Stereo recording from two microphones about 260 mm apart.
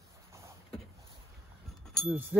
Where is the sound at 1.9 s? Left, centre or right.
Centre.